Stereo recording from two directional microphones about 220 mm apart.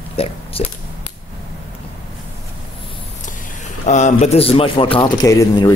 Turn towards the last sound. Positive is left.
turn(degrees=15)  # may be behind; listen again after turning